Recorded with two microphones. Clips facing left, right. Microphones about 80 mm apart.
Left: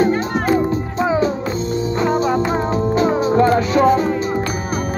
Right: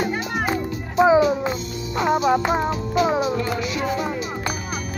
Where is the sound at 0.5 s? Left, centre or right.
Centre.